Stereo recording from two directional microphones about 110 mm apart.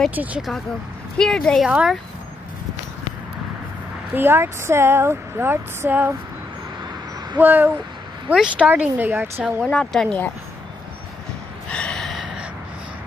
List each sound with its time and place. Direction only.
0.1 s a woman's voice: 15° right (ahead or behind)
1.1 s speech: 5° left (ahead or behind)
1.7 s a woman's voice: 10° right (ahead or behind)
4.1 s speech: 20° right (ahead or behind)
7.3 s a woman's voice: 15° right (ahead or behind)
9.7 s speech: 10° left (ahead or behind)
11.7 s gasp: 10° left (ahead or behind)